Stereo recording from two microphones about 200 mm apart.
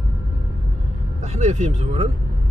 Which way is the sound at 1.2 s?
35° right (ahead or behind).